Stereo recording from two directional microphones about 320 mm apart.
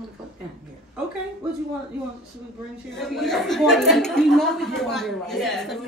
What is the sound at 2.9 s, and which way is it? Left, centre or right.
Speech, centre.